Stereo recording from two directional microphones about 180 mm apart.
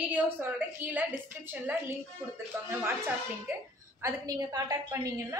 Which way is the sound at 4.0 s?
20° right (ahead or behind).